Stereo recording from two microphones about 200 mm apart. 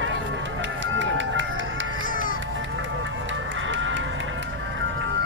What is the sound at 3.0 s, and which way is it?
Music, 70° right (ahead or behind).